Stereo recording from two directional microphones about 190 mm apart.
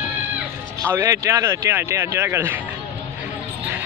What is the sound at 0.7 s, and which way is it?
Speech, 15° right (ahead or behind).